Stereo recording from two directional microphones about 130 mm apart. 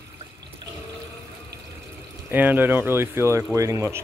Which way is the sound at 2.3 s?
15° right (ahead or behind).